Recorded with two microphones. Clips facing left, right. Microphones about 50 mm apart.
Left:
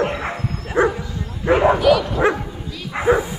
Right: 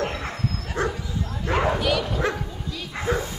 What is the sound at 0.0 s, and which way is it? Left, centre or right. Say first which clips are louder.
Bow-wow: left 5 dB; left.